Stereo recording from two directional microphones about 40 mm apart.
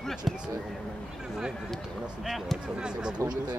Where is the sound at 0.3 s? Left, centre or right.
Centre.